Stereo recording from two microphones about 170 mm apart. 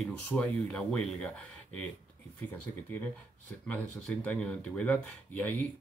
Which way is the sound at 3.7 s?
10° left (ahead or behind).